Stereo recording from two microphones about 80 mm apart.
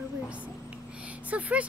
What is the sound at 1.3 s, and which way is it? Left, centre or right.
Speech, centre.